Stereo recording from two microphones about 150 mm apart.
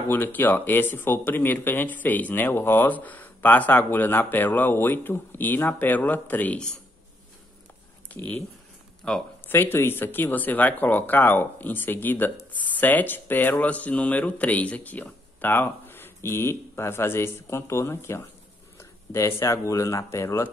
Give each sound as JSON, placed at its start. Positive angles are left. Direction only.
{"t": 0.1, "sound": "speech", "side_deg": 15}
{"t": 8.1, "sound": "speech", "side_deg": 10}